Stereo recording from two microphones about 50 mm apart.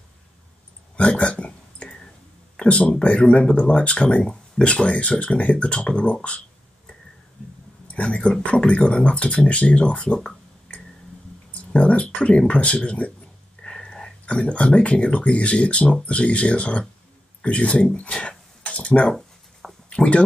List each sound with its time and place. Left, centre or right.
0.9 s a sound: left
2.6 s speech: left
7.9 s speech: left